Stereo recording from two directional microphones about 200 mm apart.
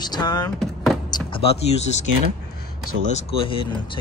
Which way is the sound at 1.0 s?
20° left (ahead or behind).